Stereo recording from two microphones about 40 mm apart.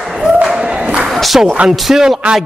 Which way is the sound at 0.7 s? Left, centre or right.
Right.